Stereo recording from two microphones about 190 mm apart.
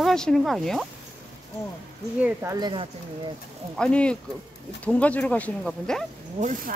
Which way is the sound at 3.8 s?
5° left (ahead or behind).